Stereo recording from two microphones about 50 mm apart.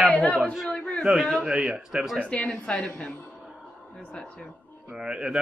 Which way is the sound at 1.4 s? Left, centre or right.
Centre.